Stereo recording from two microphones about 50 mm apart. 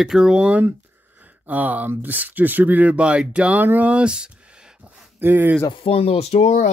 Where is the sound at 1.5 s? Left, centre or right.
Right.